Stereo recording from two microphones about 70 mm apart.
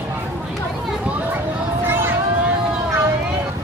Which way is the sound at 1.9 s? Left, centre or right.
Right.